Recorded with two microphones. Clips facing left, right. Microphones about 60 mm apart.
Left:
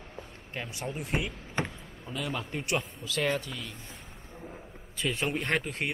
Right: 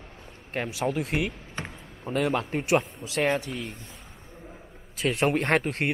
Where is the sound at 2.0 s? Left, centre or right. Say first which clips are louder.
Right 9 dB; right.